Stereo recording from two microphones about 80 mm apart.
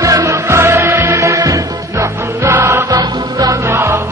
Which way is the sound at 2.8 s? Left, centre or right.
Right.